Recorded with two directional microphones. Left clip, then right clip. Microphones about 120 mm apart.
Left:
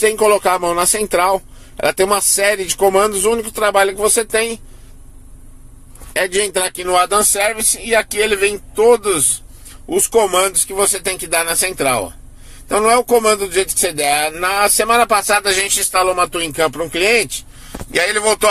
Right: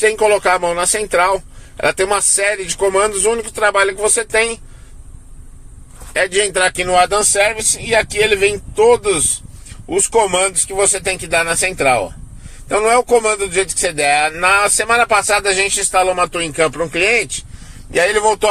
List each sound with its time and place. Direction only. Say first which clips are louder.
0.0 s a man's voice: even; 55° left (ahead or behind)
6.1 s a man's voice: right 2 dB; 45° left (ahead or behind); by 17.3 s 25° left (ahead or behind)
17.9 s speech: right 2 dB; 15° left (ahead or behind)